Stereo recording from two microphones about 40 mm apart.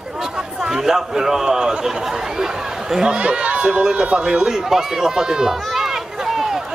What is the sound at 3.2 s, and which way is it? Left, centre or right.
Speech, right.